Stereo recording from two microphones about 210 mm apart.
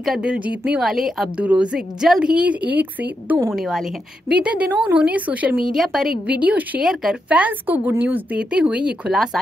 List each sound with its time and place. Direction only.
0.0 s a woman's voice: 5° right (ahead or behind)